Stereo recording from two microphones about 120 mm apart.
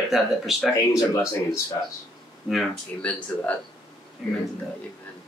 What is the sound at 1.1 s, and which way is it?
Speech, 25° left (ahead or behind).